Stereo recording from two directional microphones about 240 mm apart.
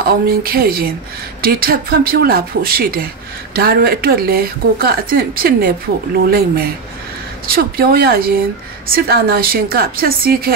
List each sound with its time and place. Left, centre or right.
0.0 s speech: right